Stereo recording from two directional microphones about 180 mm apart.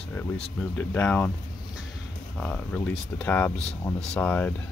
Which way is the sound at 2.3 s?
5° left (ahead or behind).